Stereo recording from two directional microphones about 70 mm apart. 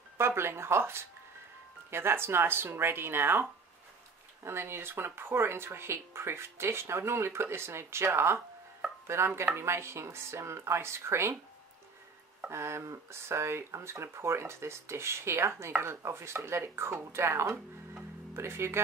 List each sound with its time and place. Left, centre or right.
0.2 s speech: right
4.5 s speech: right
12.4 s speech: right